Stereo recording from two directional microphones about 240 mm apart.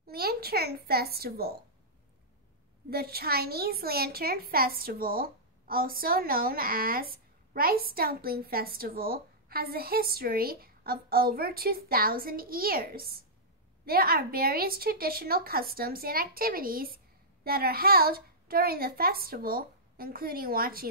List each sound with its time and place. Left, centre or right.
0.0 s a child's voice: right
2.9 s a woman's voice: right